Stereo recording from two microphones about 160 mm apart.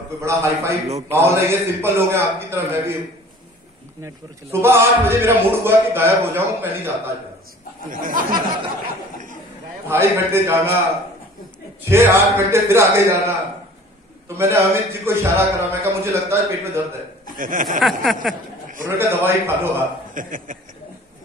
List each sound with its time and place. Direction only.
0.2 s a man's voice: 20° right (ahead or behind)
4.0 s a man's voice: 15° right (ahead or behind)
7.9 s speech: 60° right (ahead or behind)
9.8 s a man's voice: 15° right (ahead or behind)
11.8 s a man's voice: 15° right (ahead or behind)
14.3 s a man's voice: 15° right (ahead or behind)
17.4 s speech: 60° right (ahead or behind)
17.6 s a sound: centre (ahead or behind)
18.9 s a man's voice: 15° right (ahead or behind)
20.2 s speech: 55° right (ahead or behind)